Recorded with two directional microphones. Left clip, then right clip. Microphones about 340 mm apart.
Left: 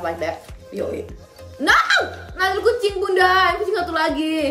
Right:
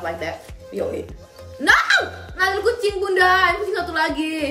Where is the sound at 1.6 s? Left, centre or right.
Centre.